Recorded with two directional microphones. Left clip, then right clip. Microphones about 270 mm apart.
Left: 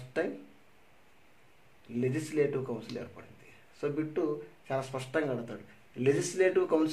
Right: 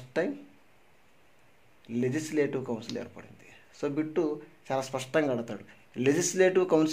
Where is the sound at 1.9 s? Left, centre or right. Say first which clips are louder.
Right 2 dB; right.